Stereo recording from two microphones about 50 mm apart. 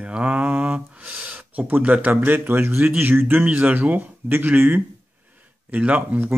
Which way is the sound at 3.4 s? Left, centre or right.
Right.